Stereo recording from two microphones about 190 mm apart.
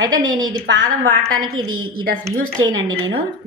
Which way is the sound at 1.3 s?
90° right.